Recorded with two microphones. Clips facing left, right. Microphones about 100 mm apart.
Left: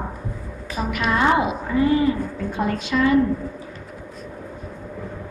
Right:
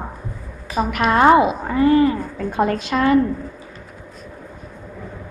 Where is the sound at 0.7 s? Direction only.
50° right (ahead or behind).